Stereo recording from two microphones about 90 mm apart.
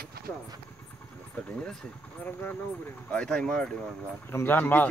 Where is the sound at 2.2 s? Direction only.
20° left (ahead or behind).